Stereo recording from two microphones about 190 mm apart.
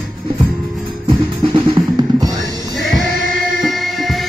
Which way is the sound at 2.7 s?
Centre (ahead or behind).